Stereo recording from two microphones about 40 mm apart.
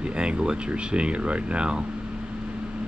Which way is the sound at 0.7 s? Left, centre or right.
Right.